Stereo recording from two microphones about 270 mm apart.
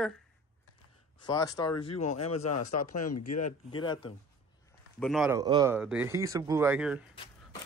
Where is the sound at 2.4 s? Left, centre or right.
Left.